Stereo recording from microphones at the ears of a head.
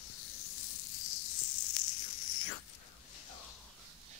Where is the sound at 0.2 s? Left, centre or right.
Left.